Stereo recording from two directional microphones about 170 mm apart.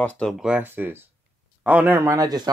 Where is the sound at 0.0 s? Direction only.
5° left (ahead or behind).